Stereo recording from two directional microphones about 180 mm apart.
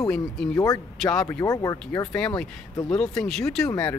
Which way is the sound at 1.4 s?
20° left (ahead or behind).